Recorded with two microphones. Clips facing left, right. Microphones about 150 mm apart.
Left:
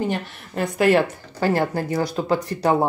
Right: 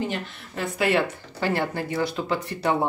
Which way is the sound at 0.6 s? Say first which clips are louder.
Left 5 dB; 45° left (ahead or behind).